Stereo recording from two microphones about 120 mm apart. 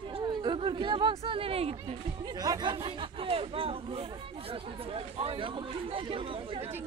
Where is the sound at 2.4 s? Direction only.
35° right (ahead or behind).